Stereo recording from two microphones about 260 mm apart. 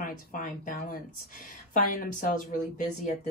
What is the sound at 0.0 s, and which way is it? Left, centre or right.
A woman's voice, left.